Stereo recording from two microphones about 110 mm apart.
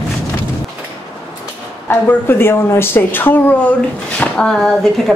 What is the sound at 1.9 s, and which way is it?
Speech, 20° left (ahead or behind).